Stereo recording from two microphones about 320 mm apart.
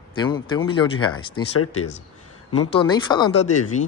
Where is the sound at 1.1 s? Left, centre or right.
Left.